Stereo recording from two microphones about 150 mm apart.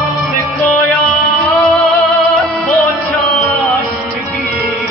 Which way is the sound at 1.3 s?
Centre (ahead or behind).